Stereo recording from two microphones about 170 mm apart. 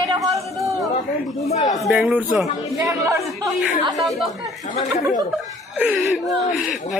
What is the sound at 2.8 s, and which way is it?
Speech, 20° right (ahead or behind).